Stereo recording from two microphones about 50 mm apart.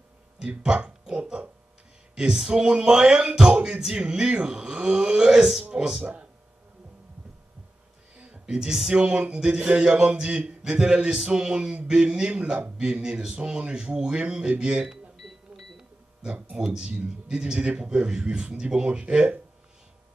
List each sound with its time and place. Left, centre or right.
1.0 s oink: centre
2.1 s speech: centre
8.2 s speech: centre
16.5 s speech: centre